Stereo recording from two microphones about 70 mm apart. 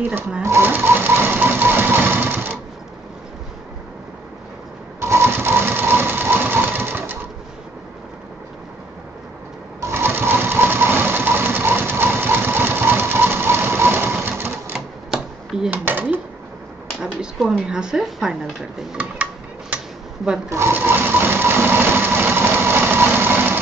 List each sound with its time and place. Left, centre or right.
0.4 s sewing machine: right
5.0 s sewing machine: right
9.8 s sewing machine: right
15.7 s a sound: right
17.0 s speech: centre
20.4 s speech: right
20.7 s a sound: right